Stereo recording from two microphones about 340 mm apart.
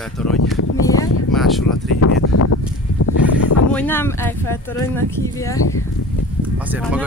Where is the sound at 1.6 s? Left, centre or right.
Left.